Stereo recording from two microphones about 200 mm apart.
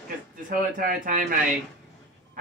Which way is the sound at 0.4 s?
40° right (ahead or behind).